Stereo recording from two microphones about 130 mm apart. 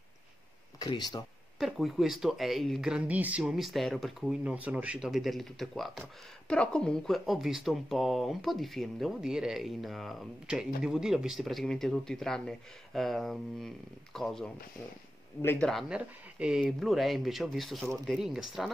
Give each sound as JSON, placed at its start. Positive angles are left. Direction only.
{"t": 0.7, "sound": "speech", "side_deg": 35}
{"t": 1.6, "sound": "speech", "side_deg": 0}
{"t": 15.4, "sound": "speech", "side_deg": 15}
{"t": 15.7, "sound": "speech", "side_deg": -5}